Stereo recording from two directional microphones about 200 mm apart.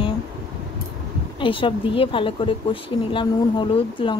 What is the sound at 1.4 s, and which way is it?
Speech, 25° left (ahead or behind).